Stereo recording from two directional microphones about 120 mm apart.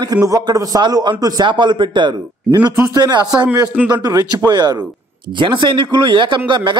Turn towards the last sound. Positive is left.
turn(degrees=-40)  # may be behind; listen again after turning